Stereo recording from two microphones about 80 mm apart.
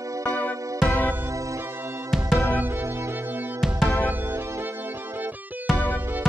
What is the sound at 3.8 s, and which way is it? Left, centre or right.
Music, left.